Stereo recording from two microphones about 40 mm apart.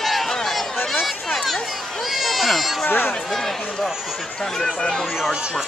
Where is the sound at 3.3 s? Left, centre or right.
Centre.